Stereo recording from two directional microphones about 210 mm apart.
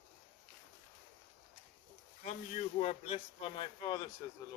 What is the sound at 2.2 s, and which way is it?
Speech, 30° left (ahead or behind).